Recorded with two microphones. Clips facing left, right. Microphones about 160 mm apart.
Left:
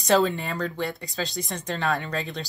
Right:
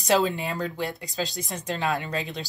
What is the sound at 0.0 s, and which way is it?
Speech, centre (ahead or behind).